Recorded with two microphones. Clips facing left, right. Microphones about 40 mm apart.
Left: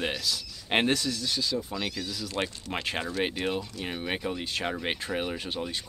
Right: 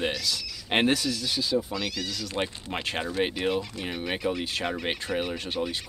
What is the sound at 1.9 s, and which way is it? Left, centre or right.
Speech, right.